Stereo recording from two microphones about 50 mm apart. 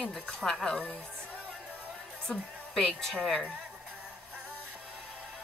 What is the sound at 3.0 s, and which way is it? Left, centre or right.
Speech, centre.